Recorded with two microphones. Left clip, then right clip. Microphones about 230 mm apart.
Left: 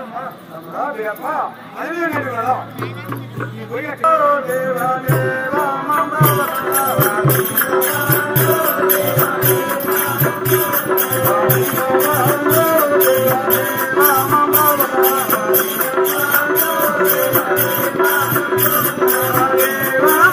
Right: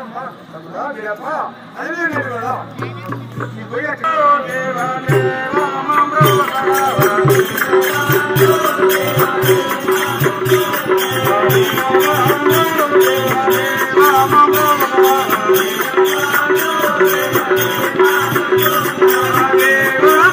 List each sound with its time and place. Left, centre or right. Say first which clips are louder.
5.1 s music: right 2 dB; left